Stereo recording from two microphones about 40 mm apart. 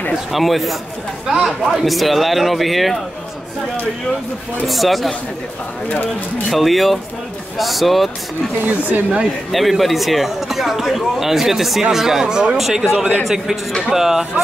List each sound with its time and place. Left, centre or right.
0.1 s speech: centre
4.6 s speech: centre
5.9 s speech: left
6.5 s speech: centre
8.5 s speech: right
9.5 s speech: centre
12.9 s a man's voice: right
13.2 s speech: centre